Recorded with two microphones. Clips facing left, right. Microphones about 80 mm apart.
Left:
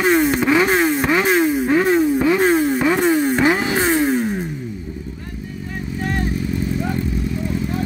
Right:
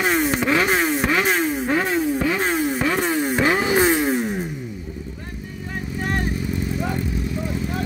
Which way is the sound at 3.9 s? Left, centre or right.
Centre.